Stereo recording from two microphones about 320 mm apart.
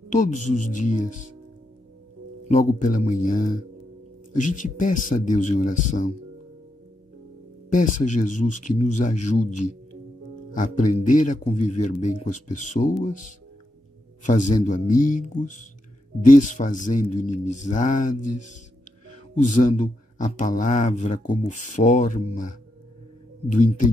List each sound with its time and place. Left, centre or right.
0.4 s speech: left
2.4 s speech: left
7.7 s speech: left
14.2 s speech: left